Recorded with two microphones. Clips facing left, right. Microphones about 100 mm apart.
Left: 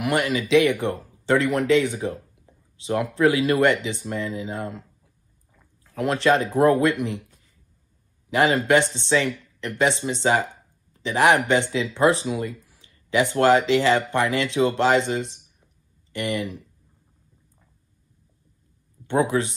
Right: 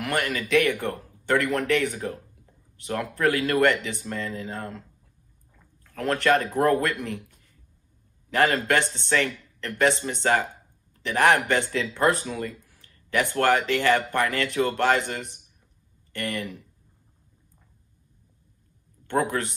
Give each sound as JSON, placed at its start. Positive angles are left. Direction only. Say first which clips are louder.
{"t": 0.0, "sound": "speech", "louder": "left 4 dB", "side_deg": 20}
{"t": 5.9, "sound": "a man's voice", "louder": "left 2 dB", "side_deg": 15}
{"t": 8.3, "sound": "speech", "louder": "left 3 dB", "side_deg": 15}
{"t": 19.0, "sound": "speech", "louder": "left 4 dB", "side_deg": 20}